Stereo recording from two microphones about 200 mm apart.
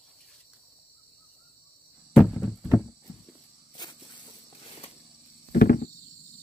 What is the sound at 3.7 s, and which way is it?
Snake, 20° left (ahead or behind).